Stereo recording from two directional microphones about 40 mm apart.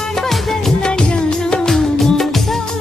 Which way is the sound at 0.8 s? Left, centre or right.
Left.